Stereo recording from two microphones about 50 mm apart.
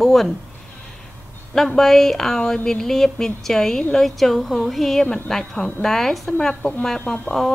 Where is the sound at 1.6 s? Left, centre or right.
Centre.